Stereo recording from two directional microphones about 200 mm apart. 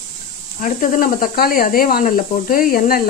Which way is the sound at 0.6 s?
40° left (ahead or behind).